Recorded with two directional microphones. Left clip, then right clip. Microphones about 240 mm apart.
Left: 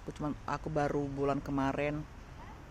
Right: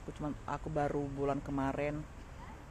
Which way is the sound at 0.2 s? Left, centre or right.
Left.